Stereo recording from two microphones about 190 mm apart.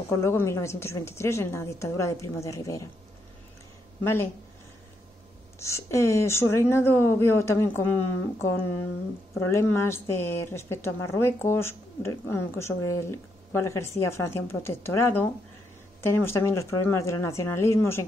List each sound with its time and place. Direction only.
0.1 s a woman's voice: 15° left (ahead or behind)
4.0 s a woman's voice: 15° left (ahead or behind)
5.6 s a woman's voice: 15° left (ahead or behind)
9.5 s a woman's voice: 15° left (ahead or behind)